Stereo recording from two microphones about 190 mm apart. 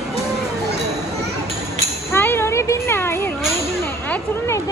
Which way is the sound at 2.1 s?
10° left (ahead or behind).